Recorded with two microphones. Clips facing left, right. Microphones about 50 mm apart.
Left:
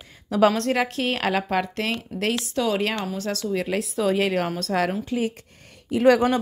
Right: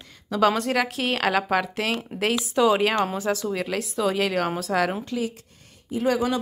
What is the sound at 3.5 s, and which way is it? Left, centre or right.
A woman's voice, centre.